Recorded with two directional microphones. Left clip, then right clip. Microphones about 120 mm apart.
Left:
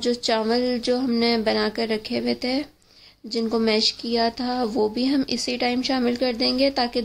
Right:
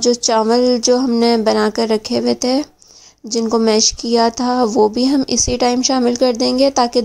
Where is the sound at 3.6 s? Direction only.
55° right (ahead or behind).